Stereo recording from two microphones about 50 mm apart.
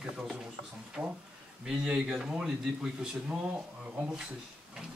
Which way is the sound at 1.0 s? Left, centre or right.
Centre.